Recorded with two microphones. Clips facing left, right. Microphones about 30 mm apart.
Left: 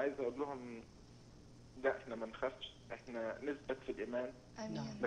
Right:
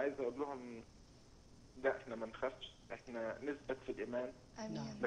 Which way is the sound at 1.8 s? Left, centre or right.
Centre.